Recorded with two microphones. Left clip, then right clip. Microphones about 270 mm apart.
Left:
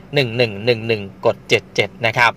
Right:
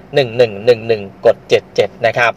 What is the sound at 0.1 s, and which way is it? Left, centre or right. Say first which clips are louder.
Speech: right 5 dB; left.